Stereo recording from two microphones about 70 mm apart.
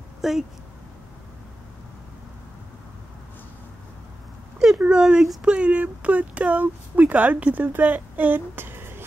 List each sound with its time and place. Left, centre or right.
0.2 s speech: centre
4.6 s a sound: centre
5.4 s speech: centre; by 9.0 s right